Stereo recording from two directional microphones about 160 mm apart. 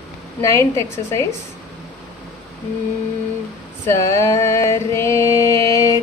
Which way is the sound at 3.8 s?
15° left (ahead or behind).